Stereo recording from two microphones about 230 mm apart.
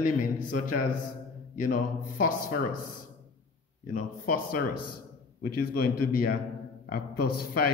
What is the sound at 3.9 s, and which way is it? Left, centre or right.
A man's voice, left.